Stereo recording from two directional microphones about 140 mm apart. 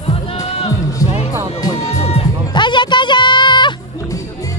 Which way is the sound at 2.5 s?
35° left (ahead or behind).